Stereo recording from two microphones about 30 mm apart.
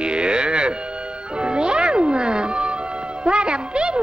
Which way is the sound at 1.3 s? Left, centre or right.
Right.